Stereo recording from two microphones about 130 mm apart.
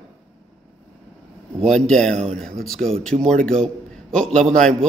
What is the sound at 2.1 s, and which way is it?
Speech, 60° right (ahead or behind).